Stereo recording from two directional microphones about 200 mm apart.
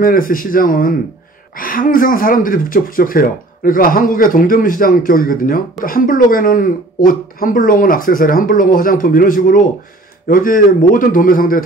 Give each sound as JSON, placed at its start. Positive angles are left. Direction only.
{"t": 0.0, "sound": "speech", "side_deg": 45}